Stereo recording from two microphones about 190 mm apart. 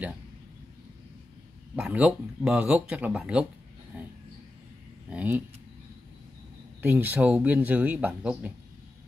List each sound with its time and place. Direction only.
1.8 s speech: 5° right (ahead or behind)
3.9 s a sound: 10° right (ahead or behind)
5.1 s speech: 10° right (ahead or behind)
6.8 s speech: 10° right (ahead or behind)